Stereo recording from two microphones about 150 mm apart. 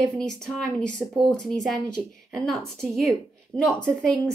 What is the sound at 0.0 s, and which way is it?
A woman's voice, 5° left (ahead or behind).